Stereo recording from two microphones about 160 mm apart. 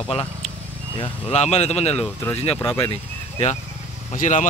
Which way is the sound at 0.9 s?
35° left (ahead or behind).